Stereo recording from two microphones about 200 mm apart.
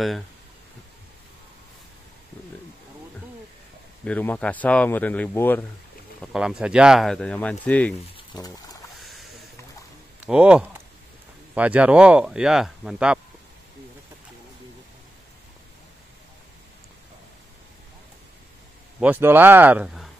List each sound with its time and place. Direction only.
4.0 s a man's voice: 10° left (ahead or behind)
6.2 s speech: 5° right (ahead or behind)
8.2 s pour: 20° left (ahead or behind)
10.2 s speech: 5° right (ahead or behind)
18.9 s speech: 10° right (ahead or behind)